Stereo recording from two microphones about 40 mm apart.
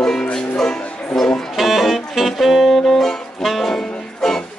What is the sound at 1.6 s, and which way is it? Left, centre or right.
Saxophone, centre.